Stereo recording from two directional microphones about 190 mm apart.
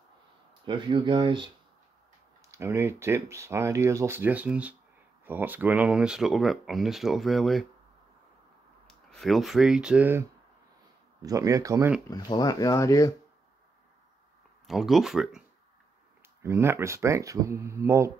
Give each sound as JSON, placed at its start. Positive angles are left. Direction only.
{"t": 0.7, "sound": "speech", "side_deg": -25}
{"t": 2.5, "sound": "speech", "side_deg": -15}
{"t": 8.8, "sound": "speech", "side_deg": 0}
{"t": 11.2, "sound": "speech", "side_deg": -15}
{"t": 12.1, "sound": "speech", "side_deg": 20}
{"t": 14.7, "sound": "speech", "side_deg": 0}
{"t": 16.4, "sound": "speech", "side_deg": -15}